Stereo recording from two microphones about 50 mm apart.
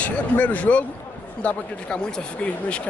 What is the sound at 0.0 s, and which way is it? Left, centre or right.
Speech, left.